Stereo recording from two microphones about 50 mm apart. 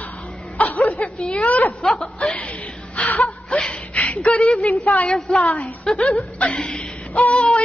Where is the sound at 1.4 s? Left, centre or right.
Left.